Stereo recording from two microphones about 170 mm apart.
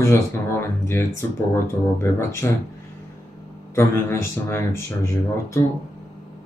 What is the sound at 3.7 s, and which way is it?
Speech, 15° left (ahead or behind).